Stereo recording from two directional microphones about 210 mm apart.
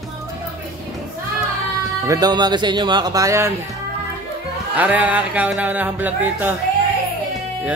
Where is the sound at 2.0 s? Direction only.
20° right (ahead or behind).